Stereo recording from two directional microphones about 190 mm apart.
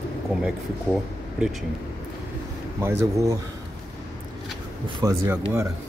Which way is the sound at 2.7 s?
15° right (ahead or behind).